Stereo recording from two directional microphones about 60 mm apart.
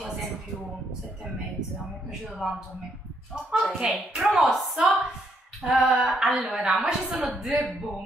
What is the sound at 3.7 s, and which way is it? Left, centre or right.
Speech, centre.